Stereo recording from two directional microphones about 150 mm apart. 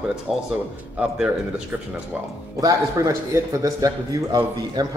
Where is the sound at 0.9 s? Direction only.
5° right (ahead or behind).